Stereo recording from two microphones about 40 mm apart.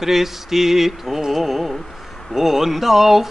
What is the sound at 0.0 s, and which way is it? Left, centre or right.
Mantra, centre.